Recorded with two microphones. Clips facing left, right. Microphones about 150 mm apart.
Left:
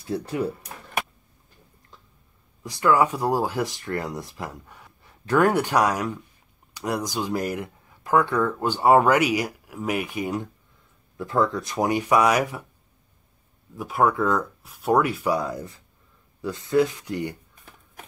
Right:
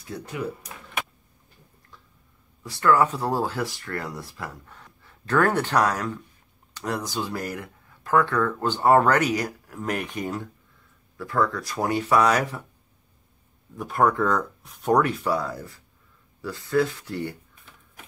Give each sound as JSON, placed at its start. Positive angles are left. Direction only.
{"t": 0.0, "sound": "speech", "side_deg": 30}
{"t": 2.6, "sound": "speech", "side_deg": 15}
{"t": 13.7, "sound": "speech", "side_deg": 5}